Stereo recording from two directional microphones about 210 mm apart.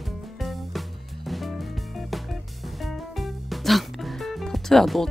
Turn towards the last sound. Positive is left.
turn(degrees=0)  # may be behind; listen again after turning